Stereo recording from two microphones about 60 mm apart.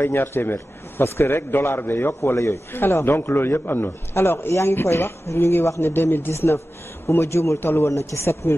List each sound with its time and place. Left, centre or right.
0.0 s a man's voice: left
2.3 s speech: left
2.7 s a man's voice: left
7.6 s a man's voice: left
7.9 s speech: left